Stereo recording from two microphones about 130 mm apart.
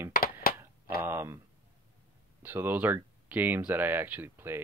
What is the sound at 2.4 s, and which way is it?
Speech, 15° right (ahead or behind).